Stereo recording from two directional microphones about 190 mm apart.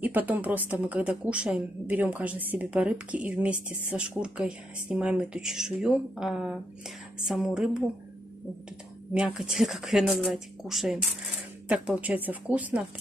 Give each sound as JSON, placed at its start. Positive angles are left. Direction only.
{"t": 0.0, "sound": "a woman's voice", "side_deg": -10}
{"t": 9.1, "sound": "a woman's voice", "side_deg": -5}